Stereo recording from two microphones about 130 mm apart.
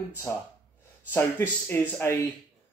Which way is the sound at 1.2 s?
15° left (ahead or behind).